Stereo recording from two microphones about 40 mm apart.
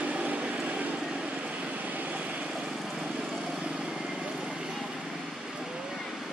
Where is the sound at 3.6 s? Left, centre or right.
Right.